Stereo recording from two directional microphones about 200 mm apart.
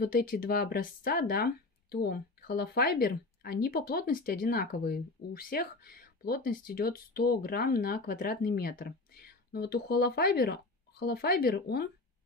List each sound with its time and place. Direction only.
0.0 s speech: 45° left (ahead or behind)